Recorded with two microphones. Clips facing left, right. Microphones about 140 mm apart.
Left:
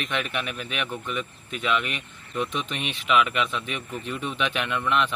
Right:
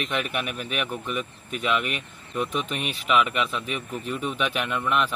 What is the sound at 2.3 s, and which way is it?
A man's voice, 5° right (ahead or behind).